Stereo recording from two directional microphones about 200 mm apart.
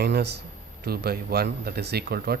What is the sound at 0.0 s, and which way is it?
Speech, 55° right (ahead or behind).